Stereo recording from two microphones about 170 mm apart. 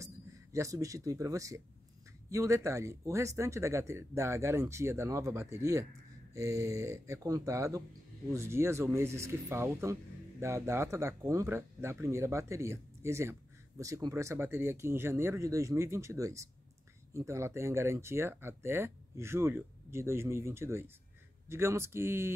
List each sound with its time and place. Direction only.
0.0 s speech: 20° right (ahead or behind)